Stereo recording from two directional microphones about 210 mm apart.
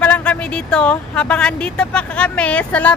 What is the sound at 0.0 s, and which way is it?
Speech, 5° left (ahead or behind).